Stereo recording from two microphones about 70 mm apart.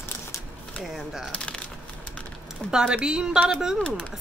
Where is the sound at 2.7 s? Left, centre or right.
Centre.